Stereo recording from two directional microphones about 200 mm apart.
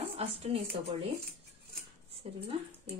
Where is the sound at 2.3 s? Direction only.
30° right (ahead or behind).